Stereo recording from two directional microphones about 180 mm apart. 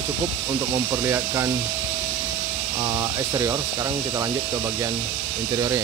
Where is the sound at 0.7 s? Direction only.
15° right (ahead or behind).